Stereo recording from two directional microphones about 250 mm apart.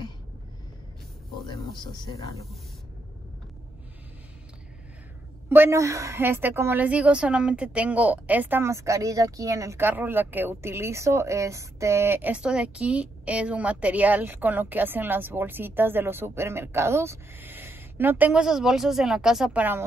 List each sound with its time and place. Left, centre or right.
1.7 s speech: centre
5.5 s a woman's voice: centre